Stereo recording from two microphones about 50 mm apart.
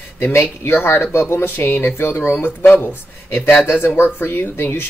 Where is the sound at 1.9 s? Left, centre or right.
Left.